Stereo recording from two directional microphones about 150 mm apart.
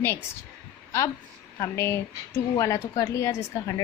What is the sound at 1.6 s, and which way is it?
A woman's voice, 15° left (ahead or behind).